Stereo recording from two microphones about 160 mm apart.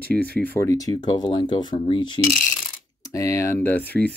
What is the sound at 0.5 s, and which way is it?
Speech, 20° left (ahead or behind).